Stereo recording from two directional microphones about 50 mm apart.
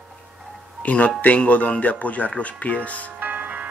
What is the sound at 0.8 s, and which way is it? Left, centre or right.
Speech, left.